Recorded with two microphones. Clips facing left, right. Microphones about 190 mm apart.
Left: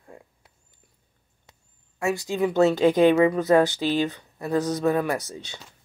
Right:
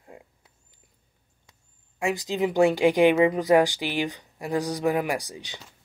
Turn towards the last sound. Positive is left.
turn(degrees=-15)  # may be behind; listen again after turning